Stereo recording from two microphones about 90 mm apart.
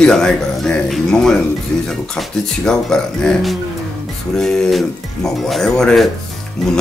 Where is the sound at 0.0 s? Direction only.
5° left (ahead or behind).